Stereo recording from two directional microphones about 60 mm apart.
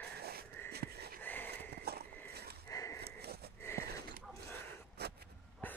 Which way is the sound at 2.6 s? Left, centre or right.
Left.